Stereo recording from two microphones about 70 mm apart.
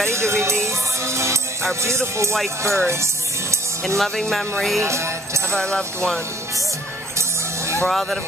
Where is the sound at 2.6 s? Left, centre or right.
Right.